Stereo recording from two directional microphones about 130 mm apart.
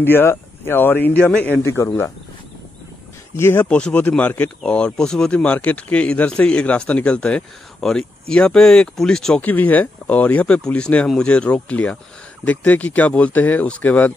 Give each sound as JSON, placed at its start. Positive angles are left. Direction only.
{"t": 0.0, "sound": "speech", "side_deg": 15}
{"t": 3.3, "sound": "speech", "side_deg": 15}